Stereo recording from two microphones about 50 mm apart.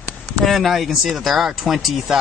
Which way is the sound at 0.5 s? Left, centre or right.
Centre.